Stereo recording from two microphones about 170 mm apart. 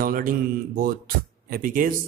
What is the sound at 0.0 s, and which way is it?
Mantra, 55° right (ahead or behind).